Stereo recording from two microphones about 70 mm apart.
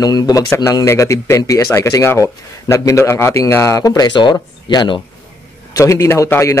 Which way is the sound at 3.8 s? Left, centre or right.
Left.